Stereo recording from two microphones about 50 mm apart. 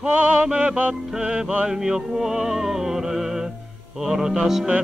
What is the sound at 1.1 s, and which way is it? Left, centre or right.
Mantra, centre.